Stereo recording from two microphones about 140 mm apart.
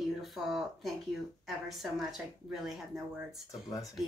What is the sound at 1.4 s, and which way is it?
Speech, centre (ahead or behind).